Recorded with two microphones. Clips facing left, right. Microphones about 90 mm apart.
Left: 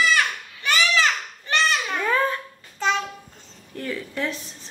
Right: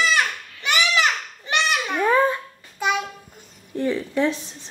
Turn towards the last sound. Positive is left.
turn(degrees=-20)  # may be behind; listen again after turning